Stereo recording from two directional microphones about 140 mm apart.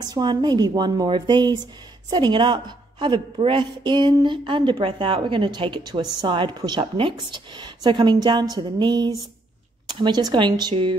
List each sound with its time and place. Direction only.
0.0 s a woman's voice: 30° right (ahead or behind)